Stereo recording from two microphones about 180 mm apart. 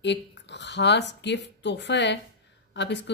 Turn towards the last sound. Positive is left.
turn(degrees=75)  # may be behind; listen again after turning